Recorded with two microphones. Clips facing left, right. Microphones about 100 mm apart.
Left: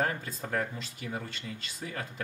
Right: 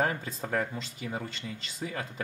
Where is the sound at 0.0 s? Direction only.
10° right (ahead or behind).